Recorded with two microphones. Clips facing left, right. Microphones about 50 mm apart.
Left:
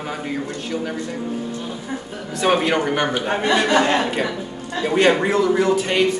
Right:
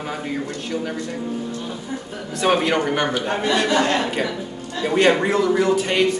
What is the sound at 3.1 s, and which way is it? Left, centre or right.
Speech, centre.